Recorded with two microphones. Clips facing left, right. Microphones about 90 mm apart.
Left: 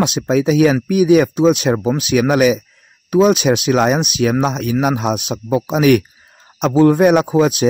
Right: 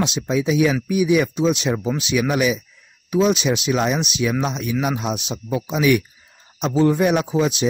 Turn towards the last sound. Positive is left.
turn(degrees=55)  # may be behind; listen again after turning